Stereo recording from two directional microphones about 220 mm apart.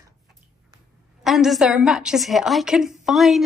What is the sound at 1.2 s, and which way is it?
A woman's voice, centre (ahead or behind).